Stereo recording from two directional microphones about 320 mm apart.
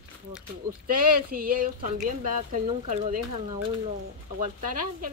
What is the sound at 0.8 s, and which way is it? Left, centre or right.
Speech, right.